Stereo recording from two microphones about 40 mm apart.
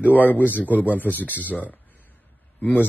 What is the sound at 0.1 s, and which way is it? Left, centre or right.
A man's voice, left.